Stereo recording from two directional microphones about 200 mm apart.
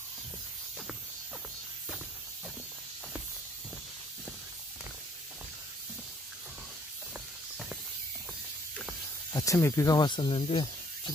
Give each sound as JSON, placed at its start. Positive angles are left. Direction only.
{"t": 9.3, "sound": "speech", "side_deg": 15}